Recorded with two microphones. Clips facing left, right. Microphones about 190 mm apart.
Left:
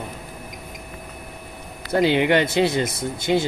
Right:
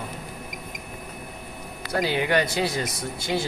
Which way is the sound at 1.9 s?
20° left (ahead or behind).